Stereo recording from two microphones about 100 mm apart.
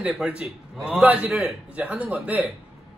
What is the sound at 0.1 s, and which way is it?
A man's voice, 15° right (ahead or behind).